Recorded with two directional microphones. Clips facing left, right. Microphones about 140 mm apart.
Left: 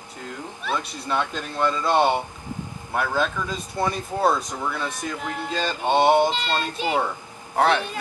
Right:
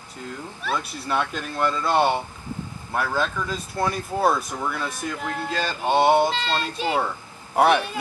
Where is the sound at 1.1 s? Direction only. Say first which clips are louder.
Even; 5° right (ahead or behind).